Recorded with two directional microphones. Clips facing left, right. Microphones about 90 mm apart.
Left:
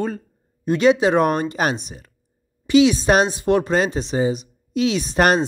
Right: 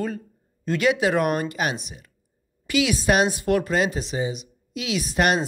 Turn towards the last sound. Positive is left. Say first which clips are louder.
# left 4 dB
turn(degrees=35)  # may be behind; listen again after turning